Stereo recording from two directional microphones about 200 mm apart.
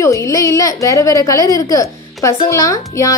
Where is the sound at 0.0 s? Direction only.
15° left (ahead or behind).